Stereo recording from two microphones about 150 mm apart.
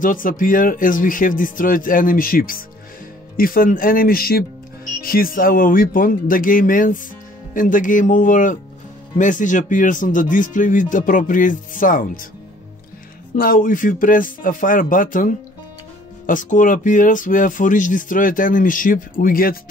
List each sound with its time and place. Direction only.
0.0 s speech: 65° left (ahead or behind); by 4.5 s 85° left
5.0 s speech: 75° left (ahead or behind)
13.4 s speech: 65° left (ahead or behind)